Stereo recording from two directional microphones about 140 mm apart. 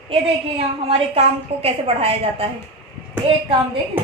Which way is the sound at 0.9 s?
45° right (ahead or behind).